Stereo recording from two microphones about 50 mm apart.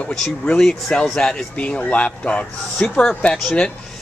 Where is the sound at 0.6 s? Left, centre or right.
Centre.